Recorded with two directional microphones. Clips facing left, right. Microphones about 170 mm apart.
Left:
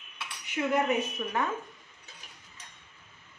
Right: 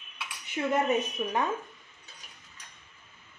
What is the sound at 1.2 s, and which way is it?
Speech, 20° right (ahead or behind).